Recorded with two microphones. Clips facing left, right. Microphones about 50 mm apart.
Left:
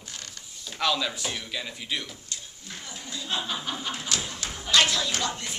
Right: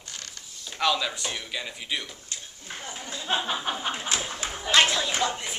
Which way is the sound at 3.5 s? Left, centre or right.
Right.